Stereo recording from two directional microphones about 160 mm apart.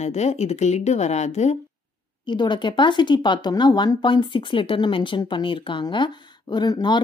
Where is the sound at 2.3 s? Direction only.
30° left (ahead or behind).